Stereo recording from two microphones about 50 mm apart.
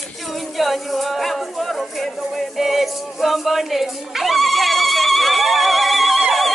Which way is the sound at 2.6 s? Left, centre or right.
Centre.